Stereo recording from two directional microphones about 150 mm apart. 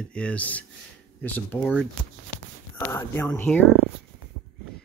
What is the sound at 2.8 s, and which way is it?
Speech, 15° left (ahead or behind).